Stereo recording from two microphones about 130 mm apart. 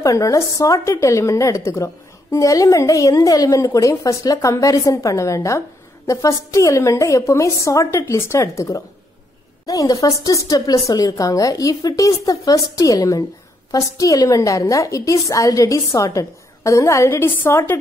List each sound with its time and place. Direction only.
0.0 s a woman's voice: 25° left (ahead or behind)